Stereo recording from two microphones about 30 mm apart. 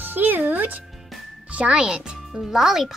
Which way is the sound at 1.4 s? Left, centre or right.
Right.